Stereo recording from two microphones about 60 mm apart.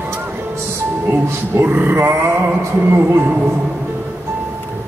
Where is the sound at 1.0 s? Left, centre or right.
Right.